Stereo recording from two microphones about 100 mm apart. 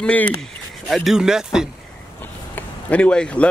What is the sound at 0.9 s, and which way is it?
Speech, 5° right (ahead or behind).